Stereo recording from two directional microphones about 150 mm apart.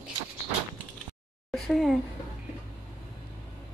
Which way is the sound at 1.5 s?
Centre (ahead or behind).